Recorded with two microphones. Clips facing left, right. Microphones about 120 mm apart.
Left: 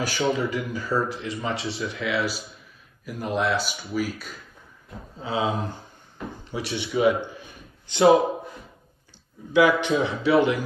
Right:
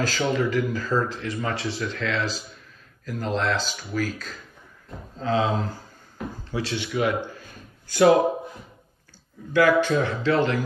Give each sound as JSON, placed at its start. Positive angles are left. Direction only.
{"t": 0.0, "sound": "speech", "side_deg": 15}
{"t": 7.3, "sound": "a sound", "side_deg": 20}
{"t": 9.5, "sound": "speech", "side_deg": 15}